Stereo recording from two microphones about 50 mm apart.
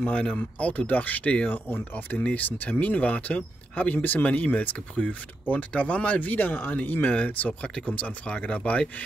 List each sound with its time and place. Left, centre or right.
0.0 s speech: left